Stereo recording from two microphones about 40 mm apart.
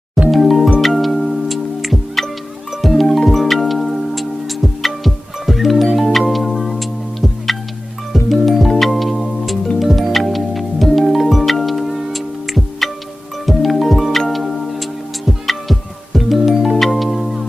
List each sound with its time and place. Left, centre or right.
0.3 s music: centre